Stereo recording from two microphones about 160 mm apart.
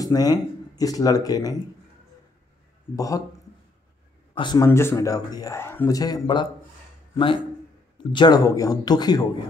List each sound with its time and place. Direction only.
0.0 s speech: 25° left (ahead or behind)
3.0 s speech: 20° left (ahead or behind)
4.4 s speech: 25° left (ahead or behind)
4.6 s speech: 15° left (ahead or behind)